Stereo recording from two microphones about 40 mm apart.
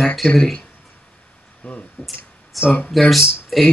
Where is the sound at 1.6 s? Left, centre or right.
Left.